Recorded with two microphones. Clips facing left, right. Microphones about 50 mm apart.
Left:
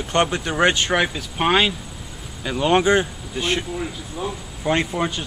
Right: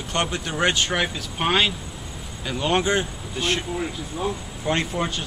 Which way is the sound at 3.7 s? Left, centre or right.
Centre.